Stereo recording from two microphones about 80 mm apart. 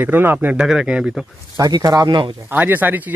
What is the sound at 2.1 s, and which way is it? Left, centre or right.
Speech, right.